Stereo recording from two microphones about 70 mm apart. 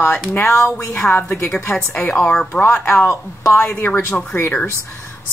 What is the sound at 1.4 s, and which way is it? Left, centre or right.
Speech, left.